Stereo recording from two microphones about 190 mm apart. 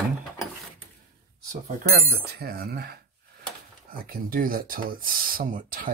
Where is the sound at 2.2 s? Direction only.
55° right (ahead or behind).